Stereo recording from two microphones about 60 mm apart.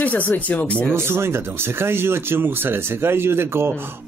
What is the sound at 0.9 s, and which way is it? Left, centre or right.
Speech, right.